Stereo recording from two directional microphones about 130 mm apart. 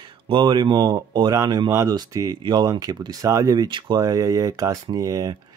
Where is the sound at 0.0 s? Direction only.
40° right (ahead or behind).